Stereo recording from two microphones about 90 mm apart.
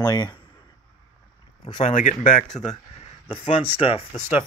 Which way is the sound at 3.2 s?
90° left.